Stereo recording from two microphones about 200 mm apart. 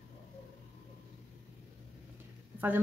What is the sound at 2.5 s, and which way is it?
Speech, 10° right (ahead or behind).